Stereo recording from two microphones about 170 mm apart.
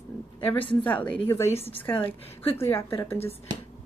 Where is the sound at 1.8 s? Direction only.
10° left (ahead or behind).